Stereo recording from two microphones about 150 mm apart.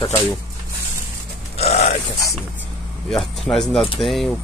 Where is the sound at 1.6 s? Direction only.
45° left (ahead or behind).